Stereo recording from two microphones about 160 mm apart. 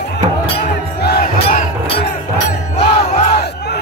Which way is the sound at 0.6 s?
75° left (ahead or behind).